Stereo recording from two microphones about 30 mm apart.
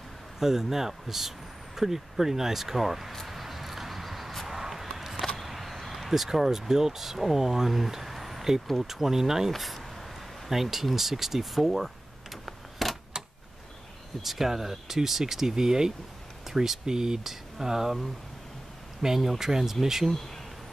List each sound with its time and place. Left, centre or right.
0.4 s speech: centre
3.3 s vehicle: centre
4.5 s a sound: centre
5.3 s speech: centre
10.5 s a sound: centre
14.2 s speech: centre
17.2 s speech: centre
18.9 s speech: centre